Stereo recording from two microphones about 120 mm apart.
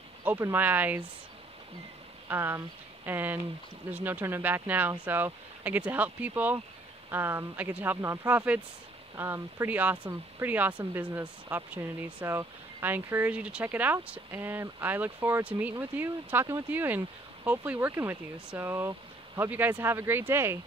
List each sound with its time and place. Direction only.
0.2 s speech: 15° right (ahead or behind)
2.2 s speech: 20° right (ahead or behind)